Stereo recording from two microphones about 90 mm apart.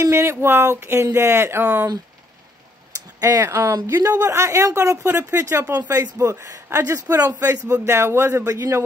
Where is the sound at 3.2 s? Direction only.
40° right (ahead or behind).